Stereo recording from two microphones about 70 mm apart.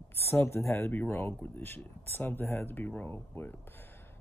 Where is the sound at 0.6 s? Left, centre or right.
Left.